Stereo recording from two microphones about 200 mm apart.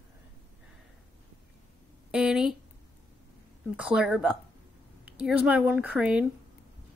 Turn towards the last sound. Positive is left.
turn(degrees=-5)  # may be behind; listen again after turning